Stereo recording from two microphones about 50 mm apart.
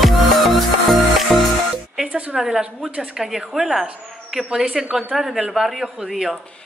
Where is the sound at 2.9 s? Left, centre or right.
Right.